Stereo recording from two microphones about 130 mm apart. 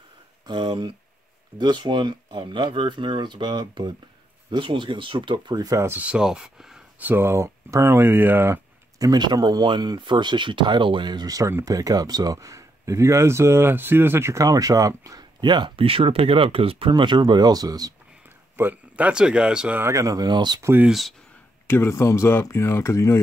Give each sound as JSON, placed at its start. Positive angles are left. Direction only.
{"t": 0.5, "sound": "speech", "side_deg": -35}
{"t": 7.1, "sound": "speech", "side_deg": -20}
{"t": 9.0, "sound": "speech", "side_deg": -30}
{"t": 18.6, "sound": "speech", "side_deg": -15}
{"t": 19.8, "sound": "speech", "side_deg": -25}
{"t": 20.6, "sound": "speech", "side_deg": -15}
{"t": 21.6, "sound": "speech", "side_deg": 20}